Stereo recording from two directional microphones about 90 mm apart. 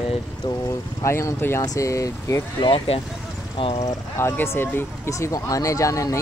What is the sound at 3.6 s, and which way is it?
Speech, 90° left.